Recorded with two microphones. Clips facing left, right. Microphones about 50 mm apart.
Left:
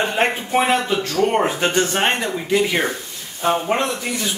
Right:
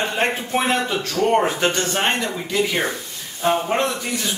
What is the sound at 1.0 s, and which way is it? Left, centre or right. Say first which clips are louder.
Speech: even; centre.